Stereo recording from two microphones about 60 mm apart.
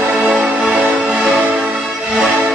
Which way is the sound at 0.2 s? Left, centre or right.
Centre.